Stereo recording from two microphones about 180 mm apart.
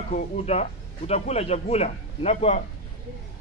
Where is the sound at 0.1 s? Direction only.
35° left (ahead or behind).